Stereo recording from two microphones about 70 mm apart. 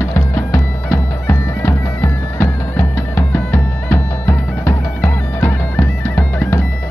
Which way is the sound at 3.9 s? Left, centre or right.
Left.